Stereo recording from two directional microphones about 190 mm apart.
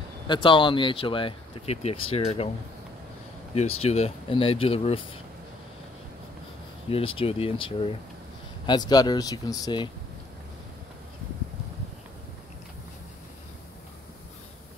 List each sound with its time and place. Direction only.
0.3 s speech: 25° left (ahead or behind)
3.5 s speech: 35° left (ahead or behind)
7.2 s speech: 30° left (ahead or behind)